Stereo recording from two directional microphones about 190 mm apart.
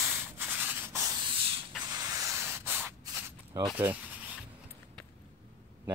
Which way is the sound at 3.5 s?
15° right (ahead or behind).